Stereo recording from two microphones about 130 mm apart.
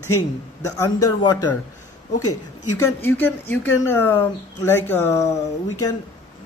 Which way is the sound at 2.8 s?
15° left (ahead or behind).